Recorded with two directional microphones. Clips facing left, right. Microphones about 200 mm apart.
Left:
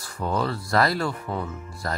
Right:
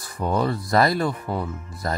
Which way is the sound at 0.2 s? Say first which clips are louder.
Right 3 dB; 20° right (ahead or behind).